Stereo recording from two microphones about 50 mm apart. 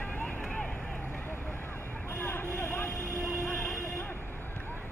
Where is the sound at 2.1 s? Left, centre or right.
Left.